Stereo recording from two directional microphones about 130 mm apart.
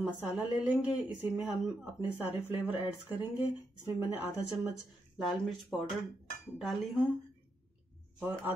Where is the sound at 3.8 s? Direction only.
15° right (ahead or behind).